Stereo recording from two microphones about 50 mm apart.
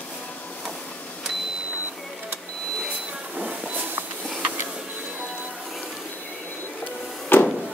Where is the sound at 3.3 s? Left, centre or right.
Right.